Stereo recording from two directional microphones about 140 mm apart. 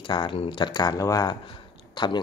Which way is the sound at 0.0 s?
35° left (ahead or behind).